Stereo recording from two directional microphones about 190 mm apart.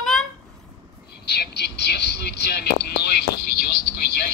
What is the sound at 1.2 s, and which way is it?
Speech, 60° left (ahead or behind).